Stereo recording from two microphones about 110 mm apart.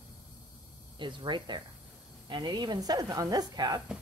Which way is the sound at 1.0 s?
45° right (ahead or behind).